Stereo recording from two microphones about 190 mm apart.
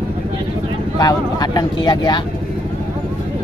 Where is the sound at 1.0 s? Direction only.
20° left (ahead or behind).